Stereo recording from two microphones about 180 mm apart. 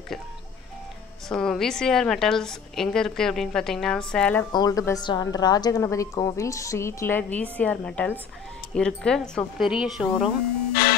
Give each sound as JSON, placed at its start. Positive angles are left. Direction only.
{"t": 1.3, "sound": "a woman's voice", "side_deg": 5}
{"t": 4.5, "sound": "a woman's voice", "side_deg": 20}
{"t": 10.7, "sound": "music", "side_deg": 55}